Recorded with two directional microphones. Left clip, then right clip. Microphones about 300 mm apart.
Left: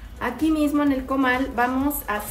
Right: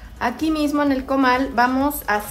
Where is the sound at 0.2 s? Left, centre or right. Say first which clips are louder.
Right 1 dB; right.